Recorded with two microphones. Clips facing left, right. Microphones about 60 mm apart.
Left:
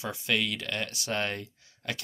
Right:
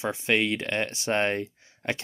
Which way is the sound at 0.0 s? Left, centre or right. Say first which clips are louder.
Right 5 dB; right.